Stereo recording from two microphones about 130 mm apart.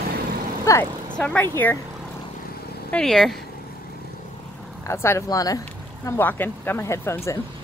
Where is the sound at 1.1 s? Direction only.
10° left (ahead or behind).